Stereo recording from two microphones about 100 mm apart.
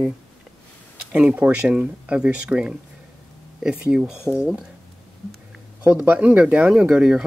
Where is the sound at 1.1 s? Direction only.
15° right (ahead or behind).